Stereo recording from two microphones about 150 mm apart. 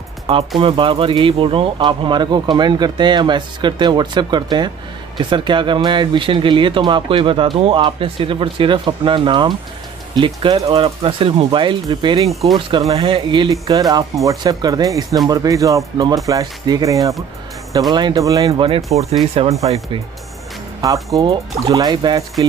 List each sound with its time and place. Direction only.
0.6 s speech: 35° right (ahead or behind)
12.3 s speech: centre (ahead or behind)
12.5 s speech: 30° right (ahead or behind)
18.5 s speech: 40° right (ahead or behind)
20.8 s speech: 20° right (ahead or behind)
21.2 s speech: 40° right (ahead or behind)
21.7 s speech: 30° right (ahead or behind)